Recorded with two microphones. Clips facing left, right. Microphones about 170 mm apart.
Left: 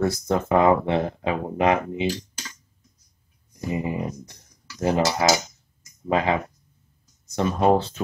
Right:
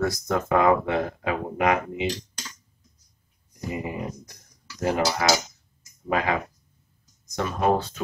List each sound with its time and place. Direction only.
0.0 s speech: 30° left (ahead or behind)
3.7 s a sound: 25° left (ahead or behind)
4.8 s speech: 25° left (ahead or behind)